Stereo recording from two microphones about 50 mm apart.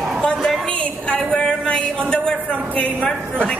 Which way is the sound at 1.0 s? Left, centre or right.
Centre.